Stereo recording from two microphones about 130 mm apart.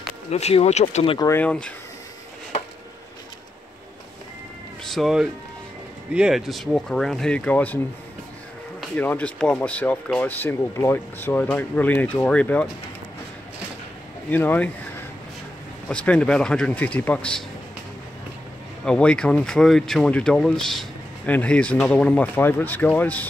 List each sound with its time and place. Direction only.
0.3 s speech: 55° left (ahead or behind)
1.4 s speech: 10° left (ahead or behind)
4.8 s speech: centre (ahead or behind)
8.9 s speech: 15° left (ahead or behind)
14.3 s speech: 15° left (ahead or behind)
15.9 s speech: 10° left (ahead or behind)
18.9 s speech: 10° left (ahead or behind)